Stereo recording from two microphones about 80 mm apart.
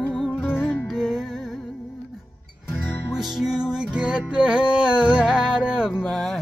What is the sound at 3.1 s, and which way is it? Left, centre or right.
Music, centre.